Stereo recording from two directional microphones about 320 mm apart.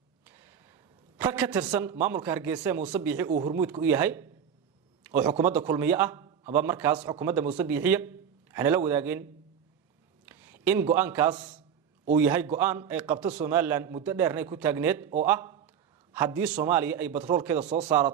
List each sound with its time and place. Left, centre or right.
1.1 s a man's voice: centre
3.3 s speech: right
3.5 s a man's voice: centre
10.2 s a man's voice: centre
15.2 s a sound: centre
16.6 s a man's voice: centre